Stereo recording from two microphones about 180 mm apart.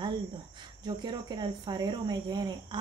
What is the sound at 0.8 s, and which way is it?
Speech, 25° right (ahead or behind).